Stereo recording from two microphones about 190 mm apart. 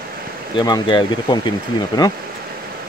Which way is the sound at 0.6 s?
25° left (ahead or behind).